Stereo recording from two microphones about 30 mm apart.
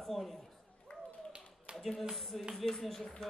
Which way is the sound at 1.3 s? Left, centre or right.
Right.